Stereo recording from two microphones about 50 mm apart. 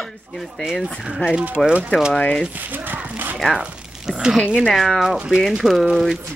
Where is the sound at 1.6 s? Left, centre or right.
Centre.